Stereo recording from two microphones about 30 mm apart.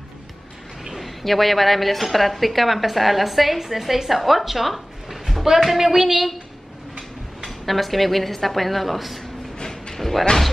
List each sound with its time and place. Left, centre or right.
0.9 s a woman's voice: centre
7.4 s a woman's voice: centre
9.6 s a sound: left
9.9 s speech: centre